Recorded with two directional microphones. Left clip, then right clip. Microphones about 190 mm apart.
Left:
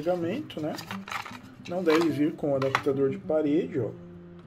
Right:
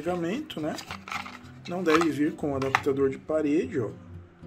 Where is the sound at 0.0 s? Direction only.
10° right (ahead or behind).